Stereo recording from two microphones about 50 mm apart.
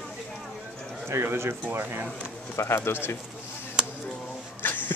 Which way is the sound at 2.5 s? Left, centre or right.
Left.